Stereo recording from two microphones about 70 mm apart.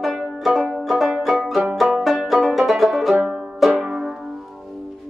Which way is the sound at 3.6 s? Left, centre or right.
Centre.